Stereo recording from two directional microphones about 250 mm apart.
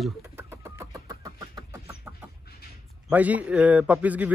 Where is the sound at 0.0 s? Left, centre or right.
Centre.